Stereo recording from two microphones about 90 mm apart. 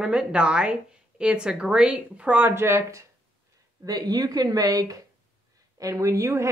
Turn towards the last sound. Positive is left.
turn(degrees=-35)  # may be behind; listen again after turning